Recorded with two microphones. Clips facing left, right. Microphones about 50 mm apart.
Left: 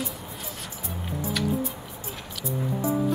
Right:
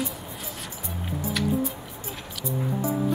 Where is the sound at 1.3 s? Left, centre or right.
Centre.